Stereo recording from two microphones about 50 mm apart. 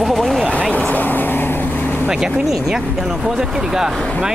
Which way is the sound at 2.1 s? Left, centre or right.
Centre.